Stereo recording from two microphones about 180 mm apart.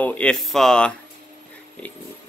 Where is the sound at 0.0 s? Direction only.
5° left (ahead or behind).